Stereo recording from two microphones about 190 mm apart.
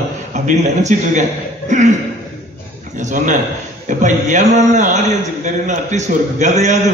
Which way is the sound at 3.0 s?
40° right (ahead or behind).